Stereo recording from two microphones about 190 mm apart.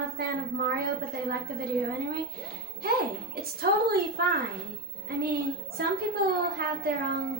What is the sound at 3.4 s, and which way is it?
A woman's voice, 55° right (ahead or behind).